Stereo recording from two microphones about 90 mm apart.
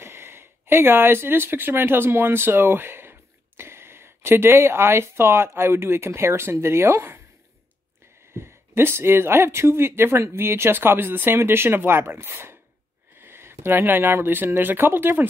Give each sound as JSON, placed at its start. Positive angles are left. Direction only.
{"t": 0.0, "sound": "speech", "side_deg": -25}
{"t": 8.4, "sound": "speech", "side_deg": -30}